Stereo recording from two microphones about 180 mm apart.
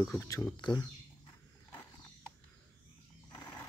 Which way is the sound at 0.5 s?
25° left (ahead or behind).